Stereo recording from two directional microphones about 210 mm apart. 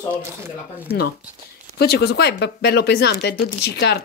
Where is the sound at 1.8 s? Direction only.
50° left (ahead or behind).